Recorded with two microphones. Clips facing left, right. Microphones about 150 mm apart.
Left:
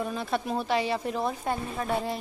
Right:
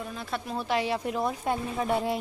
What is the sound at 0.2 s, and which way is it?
Speech, 20° left (ahead or behind).